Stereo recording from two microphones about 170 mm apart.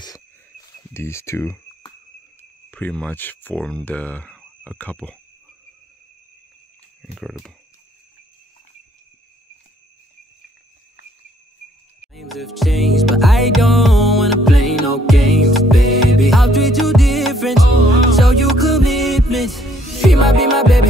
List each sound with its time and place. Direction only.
0.9 s speech: 15° left (ahead or behind)
2.7 s speech: 10° left (ahead or behind)
7.2 s speech: centre (ahead or behind)
12.0 s music: centre (ahead or behind)